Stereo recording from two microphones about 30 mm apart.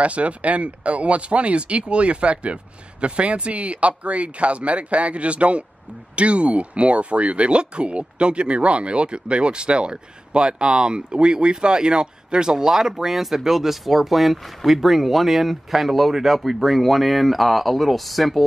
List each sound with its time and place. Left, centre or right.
0.0 s speech: right; by 18.4 s centre